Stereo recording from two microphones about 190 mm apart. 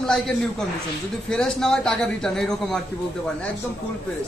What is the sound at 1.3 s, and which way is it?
A man's voice, 5° left (ahead or behind).